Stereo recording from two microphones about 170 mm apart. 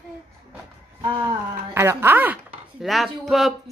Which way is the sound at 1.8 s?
15° right (ahead or behind).